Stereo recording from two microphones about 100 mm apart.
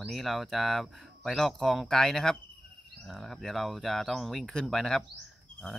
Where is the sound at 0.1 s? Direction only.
Centre (ahead or behind).